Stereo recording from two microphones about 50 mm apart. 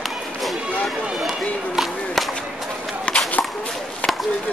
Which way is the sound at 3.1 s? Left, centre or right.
Left.